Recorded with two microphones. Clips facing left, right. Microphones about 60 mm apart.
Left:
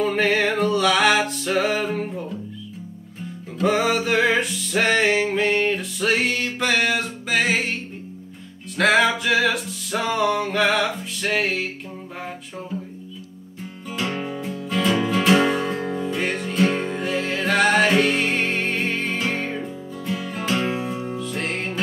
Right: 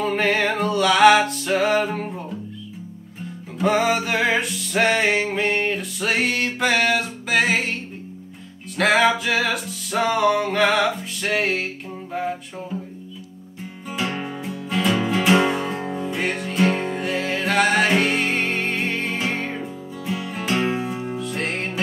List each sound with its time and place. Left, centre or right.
0.0 s music: centre
3.6 s music: centre
8.7 s music: centre
13.8 s music: centre